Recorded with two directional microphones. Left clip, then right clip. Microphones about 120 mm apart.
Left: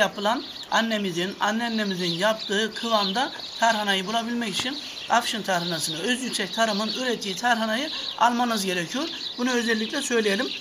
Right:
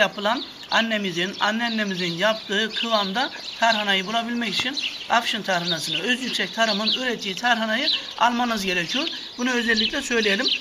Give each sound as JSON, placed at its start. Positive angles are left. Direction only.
{"t": 0.0, "sound": "speech", "side_deg": 10}